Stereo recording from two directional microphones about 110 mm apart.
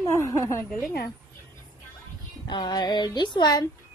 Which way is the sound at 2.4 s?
40° left (ahead or behind).